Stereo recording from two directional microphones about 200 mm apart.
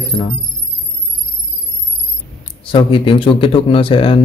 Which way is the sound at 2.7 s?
25° left (ahead or behind).